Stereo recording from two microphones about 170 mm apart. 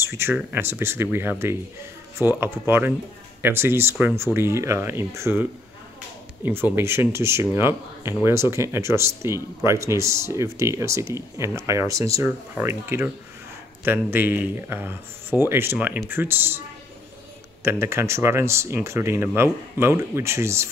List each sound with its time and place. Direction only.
0.0 s speech: 15° right (ahead or behind)
17.6 s speech: 15° right (ahead or behind)